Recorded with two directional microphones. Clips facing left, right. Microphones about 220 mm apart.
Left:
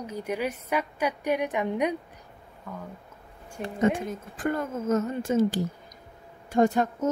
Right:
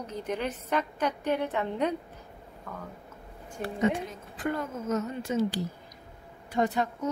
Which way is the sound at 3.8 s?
50° left (ahead or behind).